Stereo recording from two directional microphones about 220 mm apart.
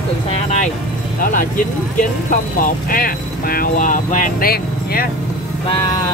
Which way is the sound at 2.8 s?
40° left (ahead or behind).